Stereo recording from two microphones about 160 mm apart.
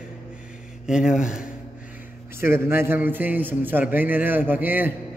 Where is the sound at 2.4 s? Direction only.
15° right (ahead or behind).